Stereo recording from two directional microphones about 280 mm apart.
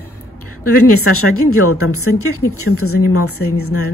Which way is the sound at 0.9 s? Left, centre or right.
Left.